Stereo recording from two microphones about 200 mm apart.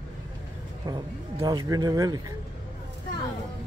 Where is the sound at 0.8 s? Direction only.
20° right (ahead or behind).